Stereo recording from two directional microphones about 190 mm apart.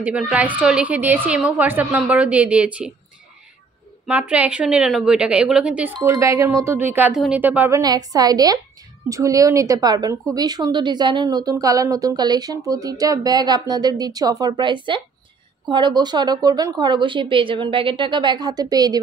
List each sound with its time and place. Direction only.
0.0 s a woman's voice: 5° right (ahead or behind)
4.1 s a woman's voice: 5° right (ahead or behind)
5.9 s a woman's voice: 15° right (ahead or behind)
7.8 s a woman's voice: 20° right (ahead or behind)